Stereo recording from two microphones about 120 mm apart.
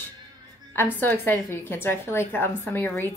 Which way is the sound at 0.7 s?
15° left (ahead or behind).